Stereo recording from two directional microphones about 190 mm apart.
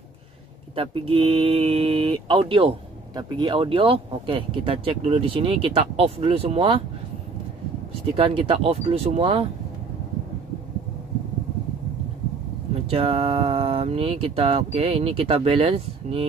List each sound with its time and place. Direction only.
0.7 s speech: 30° right (ahead or behind)
8.1 s speech: 30° right (ahead or behind)
12.8 s speech: 30° right (ahead or behind)